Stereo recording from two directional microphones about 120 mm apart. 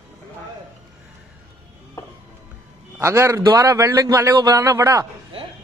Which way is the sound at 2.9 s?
20° right (ahead or behind).